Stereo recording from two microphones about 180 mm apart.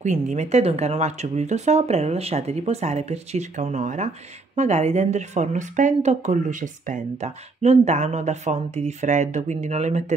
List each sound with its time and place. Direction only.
0.0 s speech: 40° right (ahead or behind)